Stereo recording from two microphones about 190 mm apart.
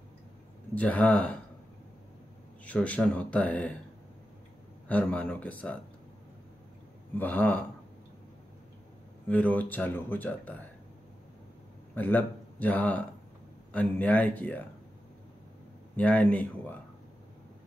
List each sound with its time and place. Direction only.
0.7 s speech: 10° left (ahead or behind)
2.6 s speech: 5° left (ahead or behind)
4.8 s speech: 5° left (ahead or behind)
7.2 s speech: 10° left (ahead or behind)
9.3 s speech: 10° left (ahead or behind)
11.9 s speech: 10° left (ahead or behind)
16.0 s speech: 5° left (ahead or behind)